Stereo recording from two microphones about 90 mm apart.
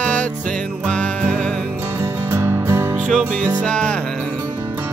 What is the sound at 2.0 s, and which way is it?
Music, 25° right (ahead or behind).